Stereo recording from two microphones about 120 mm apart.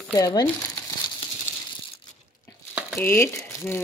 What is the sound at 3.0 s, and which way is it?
Speech, 20° left (ahead or behind).